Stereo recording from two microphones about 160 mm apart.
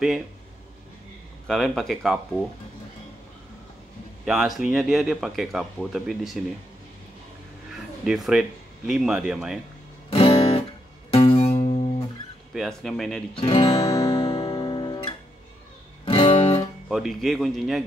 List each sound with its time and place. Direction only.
1.5 s speech: centre (ahead or behind)
4.2 s speech: 5° right (ahead or behind)
7.7 s speech: 5° right (ahead or behind)
10.0 s guitar: 35° left (ahead or behind)
11.1 s music: 35° left (ahead or behind)
12.5 s speech: centre (ahead or behind)
13.5 s music: 35° left (ahead or behind)
13.8 s music: 25° left (ahead or behind)
16.1 s guitar: 35° left (ahead or behind)
16.9 s speech: centre (ahead or behind)